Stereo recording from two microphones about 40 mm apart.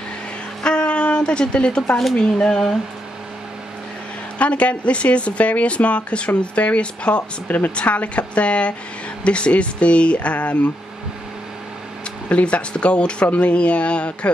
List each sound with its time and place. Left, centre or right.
0.7 s a sound: left
2.1 s speech: centre
4.4 s speech: left
7.4 s a woman's voice: left
12.3 s speech: left